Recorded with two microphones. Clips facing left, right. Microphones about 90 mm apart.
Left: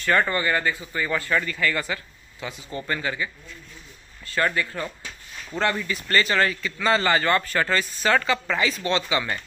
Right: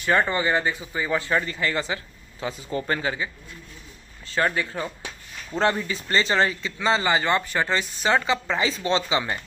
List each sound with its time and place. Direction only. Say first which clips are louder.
0.0 s speech: even; 15° right (ahead or behind)
4.3 s speech: even; 25° right (ahead or behind)